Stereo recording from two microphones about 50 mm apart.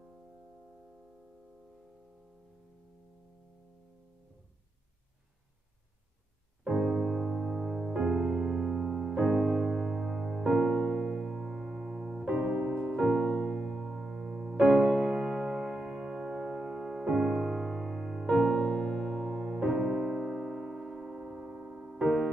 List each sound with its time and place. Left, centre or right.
6.6 s music: centre
10.5 s piano: centre
12.3 s piano: right
13.0 s music: centre
14.6 s music: centre
19.6 s music: centre
20.3 s keyboard: centre